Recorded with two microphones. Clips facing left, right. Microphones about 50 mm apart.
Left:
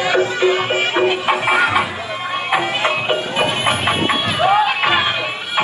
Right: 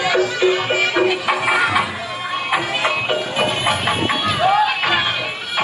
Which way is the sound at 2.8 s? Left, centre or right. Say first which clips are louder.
Left 1 dB; left.